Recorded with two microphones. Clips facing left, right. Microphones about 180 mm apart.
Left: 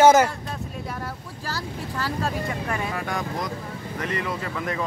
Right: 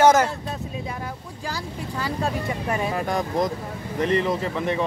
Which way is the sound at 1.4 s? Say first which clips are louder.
Right 1 dB; 15° right (ahead or behind).